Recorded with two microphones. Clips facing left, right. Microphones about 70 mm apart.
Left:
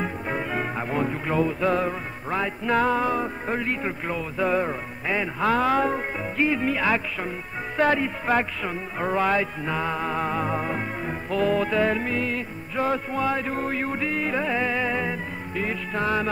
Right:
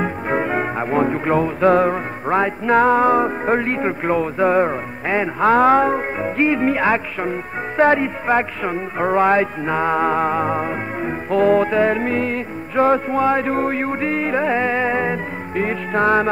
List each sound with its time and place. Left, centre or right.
0.0 s music: right